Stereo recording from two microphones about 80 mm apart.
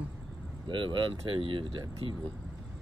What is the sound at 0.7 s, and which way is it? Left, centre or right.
Speech, right.